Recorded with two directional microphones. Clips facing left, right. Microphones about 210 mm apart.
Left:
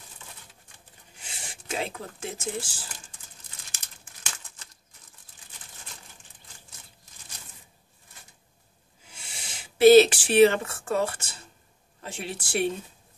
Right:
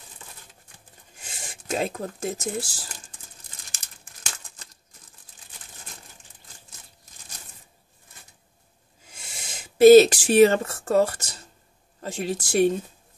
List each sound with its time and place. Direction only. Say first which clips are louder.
1.2 s speech: right 3 dB; 45° right (ahead or behind)
9.1 s speech: right 3 dB; 45° right (ahead or behind)